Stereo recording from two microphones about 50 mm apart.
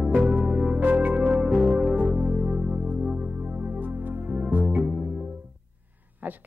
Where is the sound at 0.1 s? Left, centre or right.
Right.